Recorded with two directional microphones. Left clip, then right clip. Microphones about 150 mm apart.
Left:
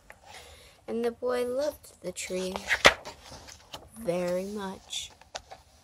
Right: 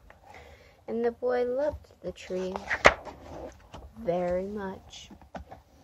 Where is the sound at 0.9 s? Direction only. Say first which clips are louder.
Right 2 dB; 35° left (ahead or behind).